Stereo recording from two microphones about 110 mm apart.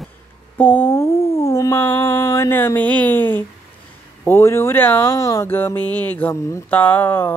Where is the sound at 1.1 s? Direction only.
65° left (ahead or behind).